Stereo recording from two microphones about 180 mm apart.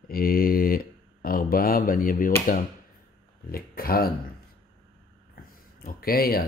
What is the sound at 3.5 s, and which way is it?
Speech, 55° left (ahead or behind).